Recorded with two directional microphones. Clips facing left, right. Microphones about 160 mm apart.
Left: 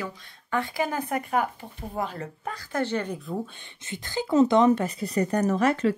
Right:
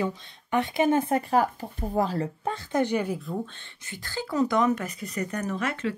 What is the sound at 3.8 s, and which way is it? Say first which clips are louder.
Speech: left 4 dB; 20° left (ahead or behind).